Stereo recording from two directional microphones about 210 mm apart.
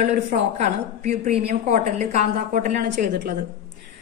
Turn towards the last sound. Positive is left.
turn(degrees=-40)  # may be behind; listen again after turning